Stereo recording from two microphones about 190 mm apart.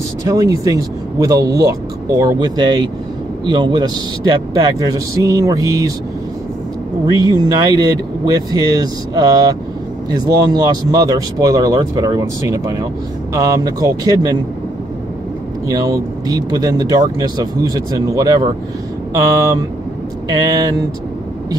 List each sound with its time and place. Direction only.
0.2 s speech: 15° right (ahead or behind)
7.2 s speech: 20° right (ahead or behind)
15.7 s speech: 20° right (ahead or behind)